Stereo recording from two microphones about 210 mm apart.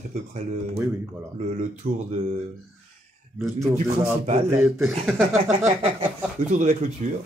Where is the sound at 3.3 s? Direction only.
10° right (ahead or behind).